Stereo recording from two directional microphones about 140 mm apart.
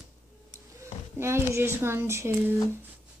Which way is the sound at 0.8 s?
20° right (ahead or behind).